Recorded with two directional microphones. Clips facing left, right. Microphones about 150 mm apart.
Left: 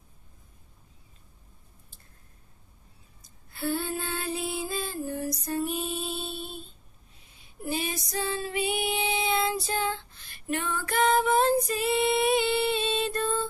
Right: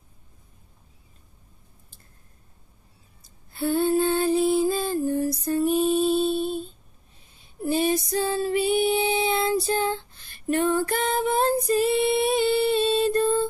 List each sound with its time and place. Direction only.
3.5 s female singing: 25° right (ahead or behind)
3.9 s lullaby: 30° right (ahead or behind)
5.9 s music: 45° right (ahead or behind)
7.6 s child singing: 30° right (ahead or behind)
10.5 s female singing: 35° right (ahead or behind)